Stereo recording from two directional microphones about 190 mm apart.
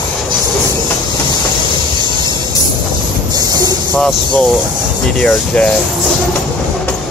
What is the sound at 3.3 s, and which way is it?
Vehicle, 20° right (ahead or behind).